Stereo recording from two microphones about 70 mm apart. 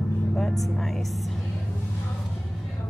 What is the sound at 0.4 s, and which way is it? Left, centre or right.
Speech, centre.